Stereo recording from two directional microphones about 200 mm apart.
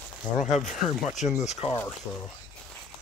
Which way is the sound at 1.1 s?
35° left (ahead or behind).